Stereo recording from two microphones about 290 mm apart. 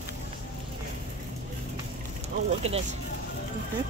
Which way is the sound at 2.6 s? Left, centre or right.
Right.